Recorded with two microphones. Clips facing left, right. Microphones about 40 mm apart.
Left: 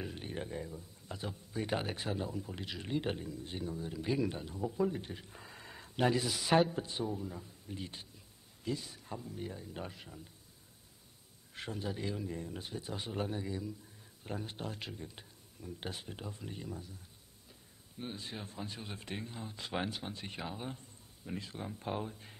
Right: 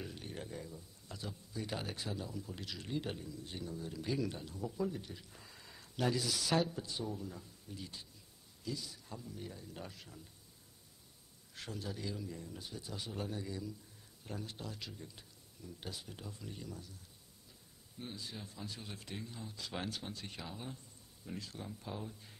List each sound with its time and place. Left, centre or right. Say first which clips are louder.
0.0 s speech: left 4 dB; left
3.4 s speech: left 3 dB; left
7.1 s speech: left 3 dB; centre
7.6 s speech: left 4 dB; left
11.5 s speech: left 4 dB; left
18.1 s speech: left 4 dB; left